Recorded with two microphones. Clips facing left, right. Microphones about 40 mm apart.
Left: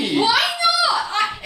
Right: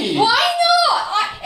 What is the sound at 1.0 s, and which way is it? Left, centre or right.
Laughter, centre.